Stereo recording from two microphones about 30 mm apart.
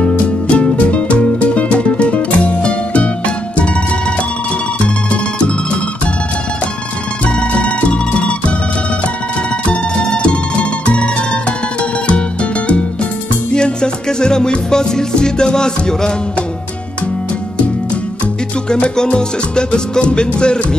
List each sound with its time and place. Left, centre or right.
0.5 s music: left
7.2 s music: left
9.7 s music: left
13.5 s music: left
19.0 s music: left